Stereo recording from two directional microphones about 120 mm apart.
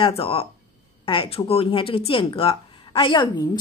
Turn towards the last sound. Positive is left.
turn(degrees=45)  # may be behind; listen again after turning